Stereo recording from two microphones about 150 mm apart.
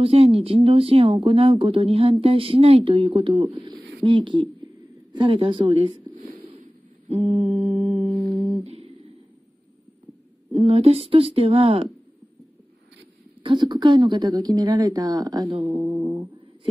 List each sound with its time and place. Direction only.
0.0 s a woman's voice: 40° right (ahead or behind)
7.1 s a woman's voice: 40° right (ahead or behind)
8.3 s music: centre (ahead or behind)
8.6 s a sound: 45° right (ahead or behind)
10.7 s a woman's voice: 40° right (ahead or behind)
13.4 s a woman's voice: 30° right (ahead or behind)